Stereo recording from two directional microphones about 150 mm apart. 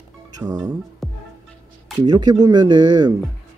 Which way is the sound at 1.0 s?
Centre (ahead or behind).